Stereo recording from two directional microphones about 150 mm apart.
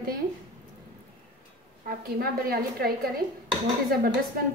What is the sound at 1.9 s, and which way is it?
A woman's voice, 85° right.